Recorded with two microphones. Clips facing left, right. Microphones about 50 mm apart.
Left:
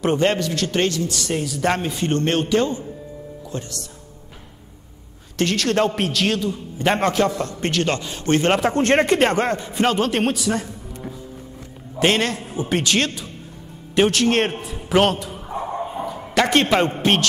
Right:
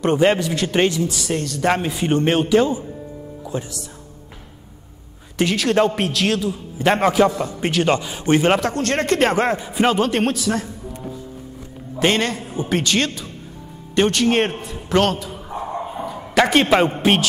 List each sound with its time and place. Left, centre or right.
0.2 s a man's voice: centre
1.3 s a man's voice: centre
5.4 s a man's voice: centre
8.7 s speech: left
9.1 s a man's voice: centre
12.0 s a man's voice: centre
16.0 s bow-wow: centre
17.0 s a man's voice: centre